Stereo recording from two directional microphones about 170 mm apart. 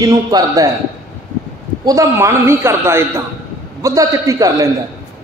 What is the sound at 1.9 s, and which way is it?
A man's voice, 15° right (ahead or behind).